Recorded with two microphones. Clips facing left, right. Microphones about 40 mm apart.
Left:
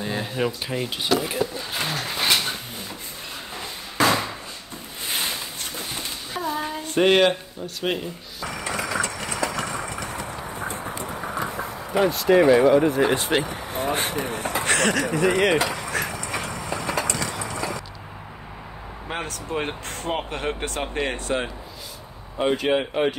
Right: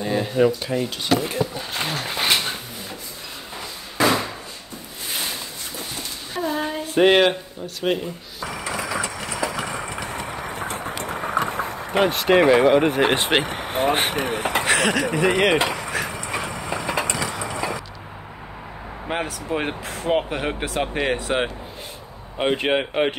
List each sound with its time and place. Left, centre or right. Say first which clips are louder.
0.0 s speech: right 6 dB; centre
1.9 s a sound: right 1 dB; centre
6.4 s female singing: right 3 dB; centre
6.9 s speech: right 2 dB; centre
7.8 s a sound: right 3 dB; centre
10.2 s a sound: right 2 dB; right
14.7 s speech: right 1 dB; centre
15.0 s speech: right 1 dB; right
15.5 s speech: right 2 dB; right
15.9 s vehicle: right 1 dB; centre
16.2 s vehicle: right 2 dB; centre
19.0 s speech: right 4 dB; centre
22.4 s speech: right 1 dB; right